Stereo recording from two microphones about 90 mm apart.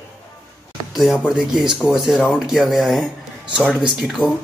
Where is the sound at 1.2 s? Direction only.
5° right (ahead or behind).